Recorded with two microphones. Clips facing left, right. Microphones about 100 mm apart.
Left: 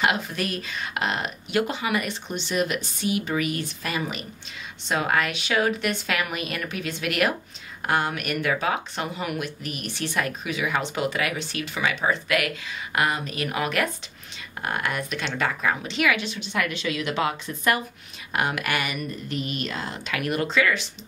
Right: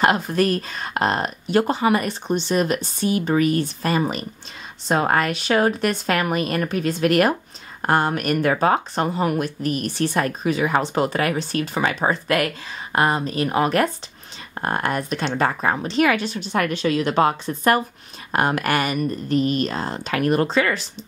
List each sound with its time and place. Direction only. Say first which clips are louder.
0.0 s speech: right 7 dB; 40° right (ahead or behind)